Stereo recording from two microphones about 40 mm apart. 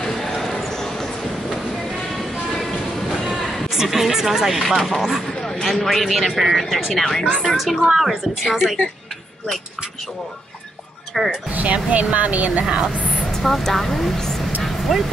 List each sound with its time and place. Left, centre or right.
0.2 s a sound: centre
2.3 s train: centre
3.3 s speech: centre
5.4 s a sound: centre
5.9 s a man's voice: centre
11.1 s a man's voice: centre
11.5 s speech: right
12.6 s speech: centre
13.0 s vehicle: centre
13.4 s speech: centre
14.6 s vehicle: centre